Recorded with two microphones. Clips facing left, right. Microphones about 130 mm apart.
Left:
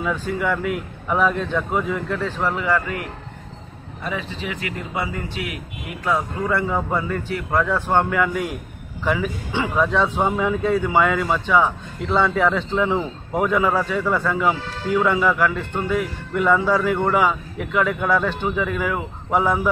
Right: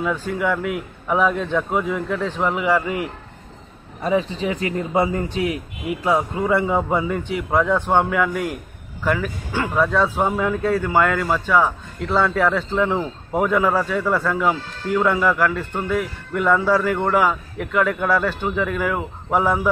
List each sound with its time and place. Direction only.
0.3 s a man's voice: 5° right (ahead or behind); by 3.1 s 20° right (ahead or behind)
4.0 s a man's voice: 30° right (ahead or behind); by 19.7 s 10° right (ahead or behind)